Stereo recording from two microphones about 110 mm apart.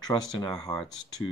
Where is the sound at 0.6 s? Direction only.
5° left (ahead or behind).